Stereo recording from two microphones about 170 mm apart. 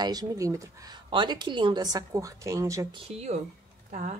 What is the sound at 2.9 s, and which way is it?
A woman's voice, 40° right (ahead or behind).